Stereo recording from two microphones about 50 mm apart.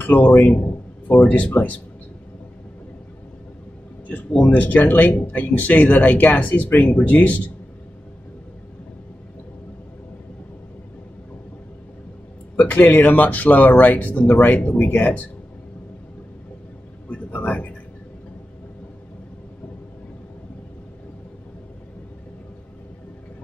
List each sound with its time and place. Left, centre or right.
0.0 s speech: left
4.4 s speech: left
12.5 s speech: left
17.1 s a sound: left